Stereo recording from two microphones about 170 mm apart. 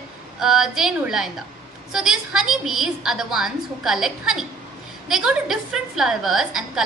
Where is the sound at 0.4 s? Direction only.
5° right (ahead or behind).